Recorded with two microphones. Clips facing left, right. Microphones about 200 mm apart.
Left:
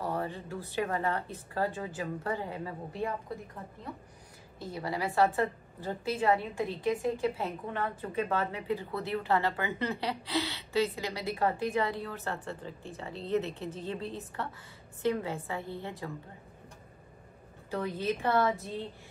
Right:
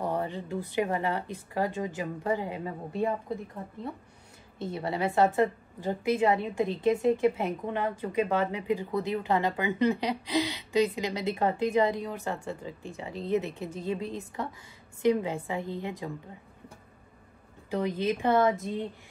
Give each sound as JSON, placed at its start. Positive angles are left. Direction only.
{"t": 0.0, "sound": "a woman's voice", "side_deg": -15}
{"t": 4.6, "sound": "a woman's voice", "side_deg": -25}
{"t": 17.6, "sound": "a woman's voice", "side_deg": -15}